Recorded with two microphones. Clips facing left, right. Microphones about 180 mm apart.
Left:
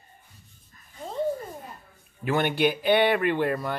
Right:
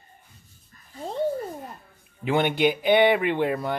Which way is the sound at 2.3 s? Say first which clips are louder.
Right 2 dB; 15° right (ahead or behind).